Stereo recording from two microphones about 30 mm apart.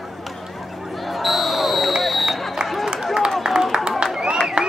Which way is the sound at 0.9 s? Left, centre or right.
Centre.